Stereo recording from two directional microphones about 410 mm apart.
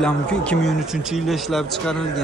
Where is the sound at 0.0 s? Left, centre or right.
Centre.